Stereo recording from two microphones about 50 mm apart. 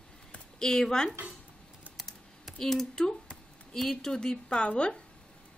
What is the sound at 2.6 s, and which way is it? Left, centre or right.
A woman's voice, centre.